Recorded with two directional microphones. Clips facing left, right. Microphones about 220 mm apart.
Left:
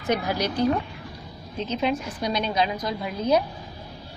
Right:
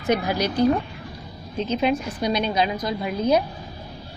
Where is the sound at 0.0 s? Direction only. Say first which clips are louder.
Right 3 dB; 10° right (ahead or behind).